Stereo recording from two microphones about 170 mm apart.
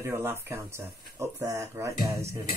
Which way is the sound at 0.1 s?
15° right (ahead or behind).